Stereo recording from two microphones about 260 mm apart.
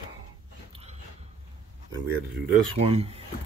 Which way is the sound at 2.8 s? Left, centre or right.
Right.